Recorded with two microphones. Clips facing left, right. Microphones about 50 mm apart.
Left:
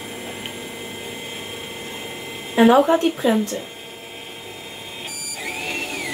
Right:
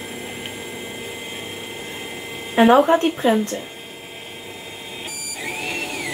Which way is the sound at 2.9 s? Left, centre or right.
Right.